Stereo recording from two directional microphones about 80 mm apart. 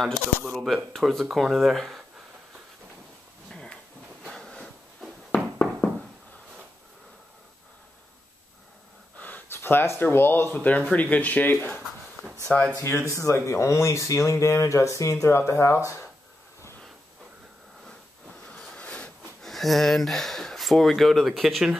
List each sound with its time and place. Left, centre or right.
0.0 s speech: centre
3.4 s a sound: centre
9.2 s speech: left
13.1 s speech: left
18.5 s a sound: centre
19.4 s speech: centre